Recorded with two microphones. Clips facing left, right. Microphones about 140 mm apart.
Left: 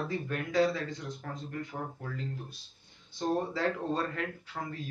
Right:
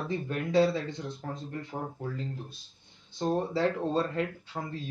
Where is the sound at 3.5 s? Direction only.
30° right (ahead or behind).